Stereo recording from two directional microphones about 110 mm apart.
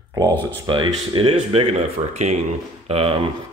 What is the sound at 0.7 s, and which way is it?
Speech, 50° right (ahead or behind).